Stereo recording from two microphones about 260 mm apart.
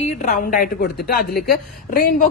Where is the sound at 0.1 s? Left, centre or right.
Left.